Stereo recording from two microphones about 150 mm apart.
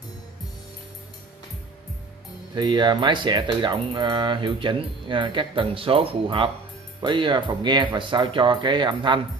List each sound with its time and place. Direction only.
2.5 s speech: 30° right (ahead or behind)